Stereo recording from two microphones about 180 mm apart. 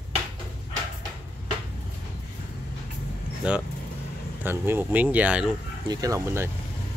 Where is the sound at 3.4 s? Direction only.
5° right (ahead or behind).